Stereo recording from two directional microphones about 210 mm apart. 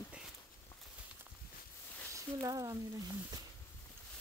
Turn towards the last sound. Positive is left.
turn(degrees=-15)  # may be behind; listen again after turning